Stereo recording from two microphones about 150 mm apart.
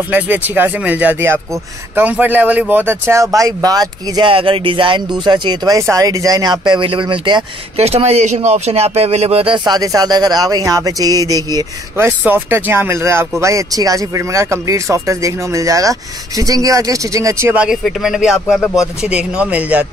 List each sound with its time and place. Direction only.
0.1 s speech: 10° right (ahead or behind); by 7.8 s 35° right (ahead or behind)
7.8 s speech: 45° right (ahead or behind); by 12.1 s 25° right (ahead or behind)
12.2 s speech: 10° right (ahead or behind)
17.6 s speech: centre (ahead or behind)